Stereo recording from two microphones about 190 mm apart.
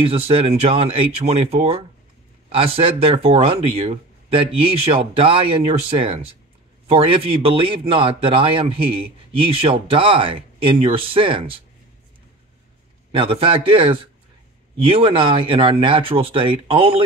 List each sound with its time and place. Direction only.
0.0 s speech: 30° right (ahead or behind)
13.1 s speech: 30° right (ahead or behind)